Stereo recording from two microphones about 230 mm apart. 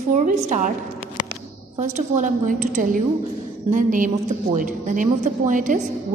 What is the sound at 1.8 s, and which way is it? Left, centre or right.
A woman's voice, right.